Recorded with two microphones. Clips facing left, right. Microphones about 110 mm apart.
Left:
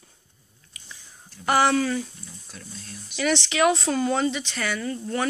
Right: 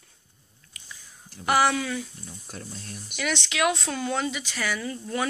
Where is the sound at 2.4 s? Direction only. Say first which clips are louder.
Right 4 dB; 50° right (ahead or behind).